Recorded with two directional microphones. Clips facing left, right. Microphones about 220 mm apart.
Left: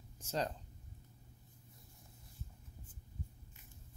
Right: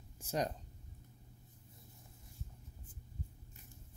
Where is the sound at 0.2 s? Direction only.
15° right (ahead or behind).